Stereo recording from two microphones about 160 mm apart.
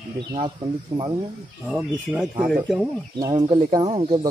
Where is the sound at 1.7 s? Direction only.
5° right (ahead or behind).